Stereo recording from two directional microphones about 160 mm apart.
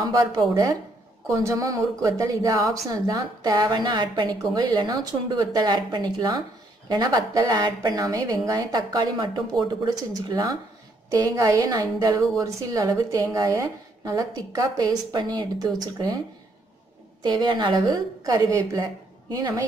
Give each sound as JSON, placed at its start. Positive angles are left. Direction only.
{"t": 0.0, "sound": "a woman's voice", "side_deg": -25}
{"t": 17.2, "sound": "a woman's voice", "side_deg": -30}